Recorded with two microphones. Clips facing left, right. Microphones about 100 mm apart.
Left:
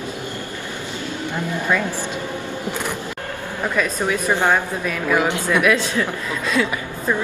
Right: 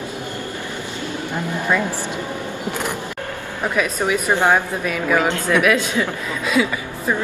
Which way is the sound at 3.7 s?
15° right (ahead or behind).